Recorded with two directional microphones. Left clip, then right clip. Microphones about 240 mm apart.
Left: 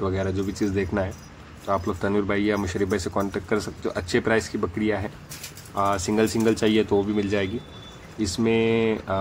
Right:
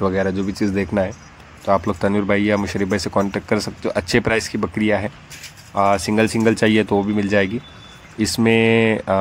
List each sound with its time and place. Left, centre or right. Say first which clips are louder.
0.0 s speech: right 6 dB; centre